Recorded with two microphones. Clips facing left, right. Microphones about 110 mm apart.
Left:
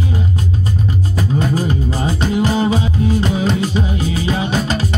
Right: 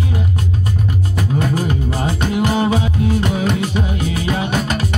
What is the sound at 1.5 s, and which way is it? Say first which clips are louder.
Music: left 1 dB; 60° right (ahead or behind).